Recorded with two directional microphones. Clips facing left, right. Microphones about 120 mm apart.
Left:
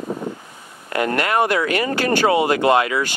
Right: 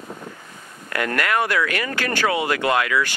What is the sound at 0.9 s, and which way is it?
Speech, 25° left (ahead or behind).